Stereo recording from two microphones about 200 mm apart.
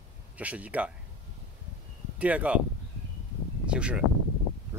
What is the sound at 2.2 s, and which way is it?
Speech, 5° right (ahead or behind).